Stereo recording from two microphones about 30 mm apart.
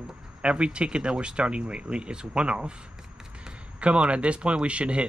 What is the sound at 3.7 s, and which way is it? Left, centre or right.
Speech, right.